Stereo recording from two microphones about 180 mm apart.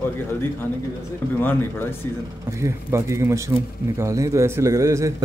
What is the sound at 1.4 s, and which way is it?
Speech, 10° left (ahead or behind).